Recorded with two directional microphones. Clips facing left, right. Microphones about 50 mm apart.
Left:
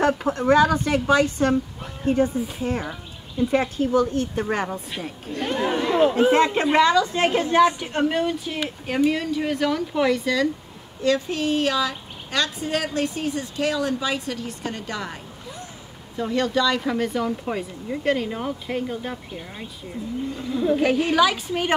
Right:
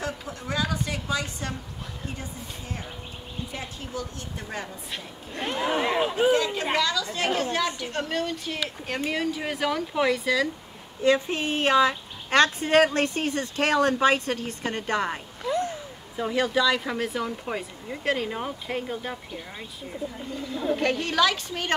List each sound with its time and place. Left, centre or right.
0.0 s a woman's voice: left
3.5 s speech: left
5.4 s speech: centre
5.8 s speech: centre
6.3 s a woman's voice: left; by 10.5 s centre
11.0 s a woman's voice: right
15.5 s a sound: right
16.2 s speech: centre
20.4 s a woman's voice: centre